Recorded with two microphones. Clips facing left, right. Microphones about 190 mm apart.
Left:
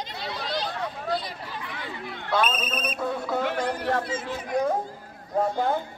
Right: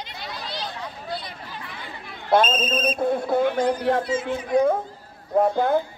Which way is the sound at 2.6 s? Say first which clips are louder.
Right 7 dB; 65° left (ahead or behind).